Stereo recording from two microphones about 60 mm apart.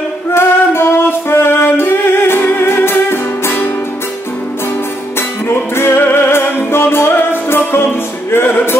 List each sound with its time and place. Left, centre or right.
0.3 s music: left
5.5 s music: left